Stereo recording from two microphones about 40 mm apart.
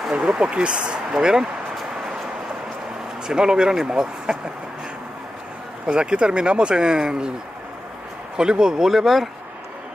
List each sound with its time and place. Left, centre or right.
0.4 s speech: right
3.3 s speech: centre
5.9 s speech: right
8.4 s speech: right
8.9 s speech: centre